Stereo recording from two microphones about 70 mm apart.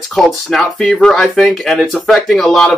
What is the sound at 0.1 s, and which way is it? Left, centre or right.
Speech, centre.